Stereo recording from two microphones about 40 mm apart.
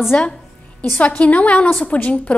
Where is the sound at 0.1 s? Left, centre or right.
Left.